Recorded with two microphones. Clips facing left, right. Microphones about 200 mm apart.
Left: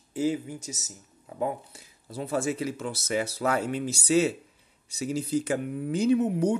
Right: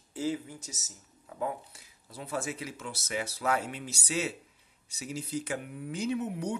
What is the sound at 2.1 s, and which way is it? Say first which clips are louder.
Speech: left 7 dB; 30° left (ahead or behind).